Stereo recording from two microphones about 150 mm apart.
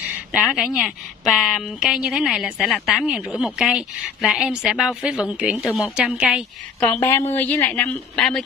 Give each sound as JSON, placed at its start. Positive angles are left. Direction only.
{"t": 0.3, "sound": "a woman's voice", "side_deg": -5}
{"t": 6.9, "sound": "a woman's voice", "side_deg": 15}